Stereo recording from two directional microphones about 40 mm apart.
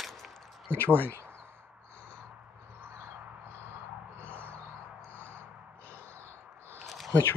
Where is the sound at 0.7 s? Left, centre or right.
Left.